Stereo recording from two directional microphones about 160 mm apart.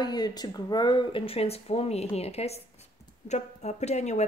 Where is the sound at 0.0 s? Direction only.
25° left (ahead or behind).